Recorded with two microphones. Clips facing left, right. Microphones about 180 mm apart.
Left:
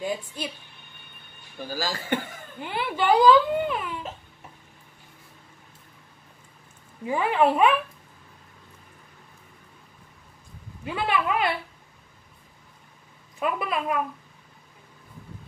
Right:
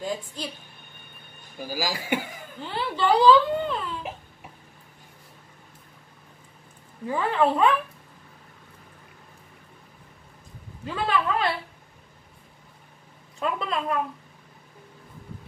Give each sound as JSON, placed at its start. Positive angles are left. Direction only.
{"t": 1.6, "sound": "speech", "side_deg": -10}
{"t": 2.6, "sound": "speech", "side_deg": 15}
{"t": 7.1, "sound": "speech", "side_deg": 15}
{"t": 10.9, "sound": "speech", "side_deg": 15}
{"t": 13.4, "sound": "speech", "side_deg": 10}